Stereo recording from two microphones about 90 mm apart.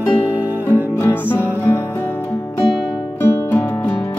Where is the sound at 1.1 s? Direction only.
20° left (ahead or behind).